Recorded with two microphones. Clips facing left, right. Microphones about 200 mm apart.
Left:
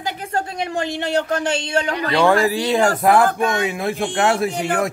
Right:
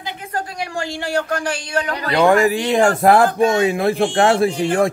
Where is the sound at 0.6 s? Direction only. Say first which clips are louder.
Left 2 dB; 20° left (ahead or behind).